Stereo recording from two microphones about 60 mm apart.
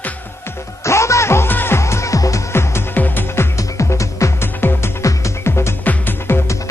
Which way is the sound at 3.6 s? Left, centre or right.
Left.